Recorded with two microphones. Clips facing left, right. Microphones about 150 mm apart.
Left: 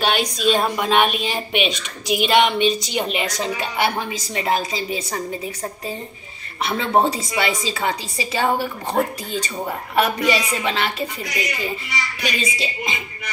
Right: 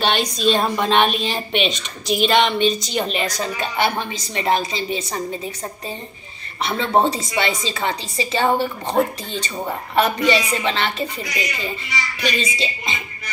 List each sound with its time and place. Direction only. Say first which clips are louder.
0.0 s a woman's voice: right 1 dB; 5° left (ahead or behind)
3.7 s a woman's voice: right 2 dB; 5° left (ahead or behind)
12.2 s a woman's voice: right 3 dB; 10° left (ahead or behind)